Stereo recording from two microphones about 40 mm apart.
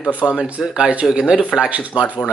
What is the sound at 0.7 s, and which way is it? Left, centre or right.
Speech, right.